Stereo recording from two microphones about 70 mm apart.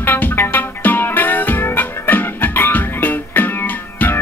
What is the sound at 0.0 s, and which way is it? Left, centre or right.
Music, left.